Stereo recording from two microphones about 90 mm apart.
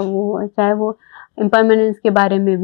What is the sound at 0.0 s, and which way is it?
Speech, 30° left (ahead or behind).